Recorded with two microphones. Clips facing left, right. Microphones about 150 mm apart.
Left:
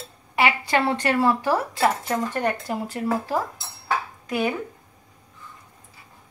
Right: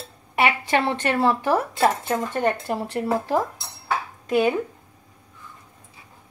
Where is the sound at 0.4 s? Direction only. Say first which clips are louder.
Even; 25° right (ahead or behind).